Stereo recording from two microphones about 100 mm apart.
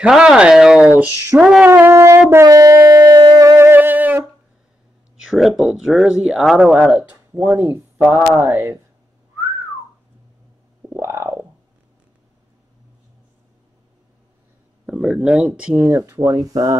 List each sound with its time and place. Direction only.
0.0 s speech: 5° right (ahead or behind)
2.0 s a sound: 30° right (ahead or behind)
2.4 s wind instrument: 35° right (ahead or behind)
3.5 s music: 20° right (ahead or behind)
5.2 s a sound: 5° right (ahead or behind)
5.6 s speech: 5° right (ahead or behind)
10.9 s a sound: 30° right (ahead or behind)
14.9 s speech: 5° right (ahead or behind)
16.2 s speech: 35° right (ahead or behind)